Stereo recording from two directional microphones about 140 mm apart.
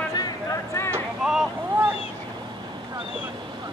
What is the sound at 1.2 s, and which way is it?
Boat, 5° right (ahead or behind).